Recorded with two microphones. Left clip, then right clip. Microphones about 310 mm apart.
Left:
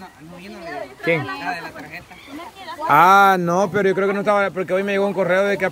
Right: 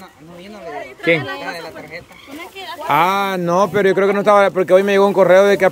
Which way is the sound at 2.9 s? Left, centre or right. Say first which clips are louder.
Left 4 dB; centre.